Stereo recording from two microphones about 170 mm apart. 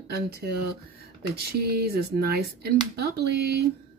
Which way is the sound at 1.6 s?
65° right (ahead or behind).